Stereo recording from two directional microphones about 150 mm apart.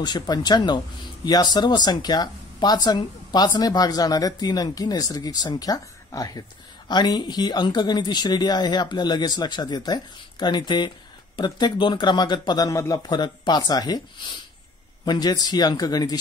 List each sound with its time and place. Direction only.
0.0 s speech: 30° left (ahead or behind)
15.0 s speech: 25° left (ahead or behind)